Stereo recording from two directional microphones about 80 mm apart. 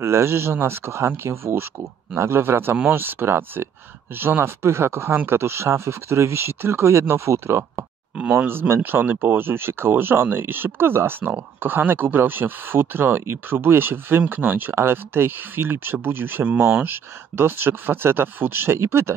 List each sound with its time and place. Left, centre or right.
0.0 s speech: right
8.2 s speech: centre